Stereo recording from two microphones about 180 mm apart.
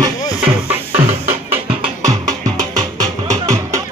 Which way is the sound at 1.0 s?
15° right (ahead or behind).